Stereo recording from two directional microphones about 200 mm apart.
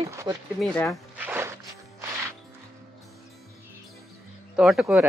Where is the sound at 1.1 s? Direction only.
10° right (ahead or behind).